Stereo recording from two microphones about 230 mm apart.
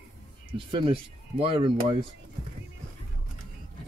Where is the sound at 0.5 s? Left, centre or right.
Right.